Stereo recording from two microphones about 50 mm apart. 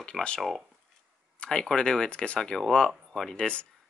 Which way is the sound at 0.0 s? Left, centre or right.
Left.